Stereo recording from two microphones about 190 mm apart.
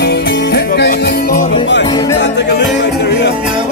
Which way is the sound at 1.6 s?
70° left (ahead or behind).